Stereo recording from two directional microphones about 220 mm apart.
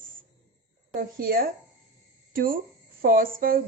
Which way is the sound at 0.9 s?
40° right (ahead or behind).